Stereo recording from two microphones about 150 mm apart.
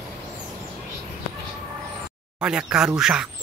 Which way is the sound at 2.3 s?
5° right (ahead or behind).